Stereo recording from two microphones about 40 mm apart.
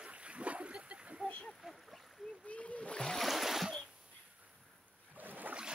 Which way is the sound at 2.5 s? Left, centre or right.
Left.